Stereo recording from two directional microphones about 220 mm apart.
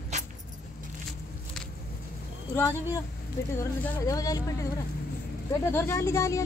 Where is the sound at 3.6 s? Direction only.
15° left (ahead or behind).